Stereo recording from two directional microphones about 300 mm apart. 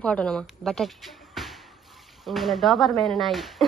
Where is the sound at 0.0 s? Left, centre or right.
Centre.